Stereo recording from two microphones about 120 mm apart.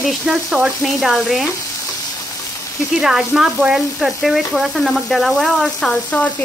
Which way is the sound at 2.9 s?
5° right (ahead or behind).